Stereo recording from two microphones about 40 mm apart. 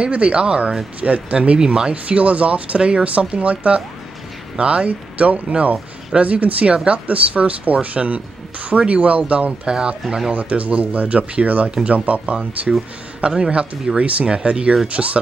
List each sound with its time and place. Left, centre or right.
0.1 s speech: right
6.6 s speech: right
7.1 s speech: right
9.7 s speech: right
10.3 s speech: right
13.2 s speech: right
15.0 s speech: centre